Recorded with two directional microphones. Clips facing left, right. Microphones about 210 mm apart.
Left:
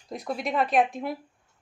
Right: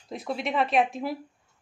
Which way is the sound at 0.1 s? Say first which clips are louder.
Even; centre (ahead or behind).